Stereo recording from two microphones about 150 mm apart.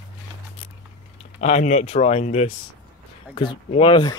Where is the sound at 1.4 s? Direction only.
50° left (ahead or behind).